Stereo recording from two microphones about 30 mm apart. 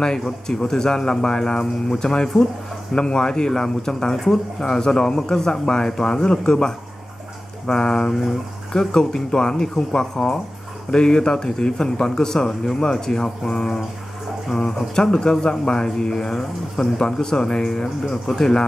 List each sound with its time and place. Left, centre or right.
0.6 s speech: left
4.2 s speech: centre
4.6 s speech: left
8.1 s speech: centre
8.7 s speech: left
15.0 s speech: left
17.0 s speech: left
18.0 s speech: centre